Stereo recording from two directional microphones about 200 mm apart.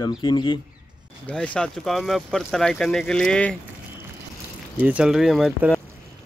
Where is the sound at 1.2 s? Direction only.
5° left (ahead or behind).